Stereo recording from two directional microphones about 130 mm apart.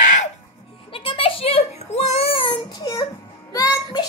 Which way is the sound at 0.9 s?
45° left (ahead or behind).